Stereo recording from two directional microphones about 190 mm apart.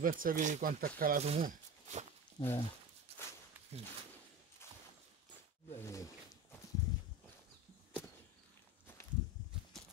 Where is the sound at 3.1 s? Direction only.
30° right (ahead or behind).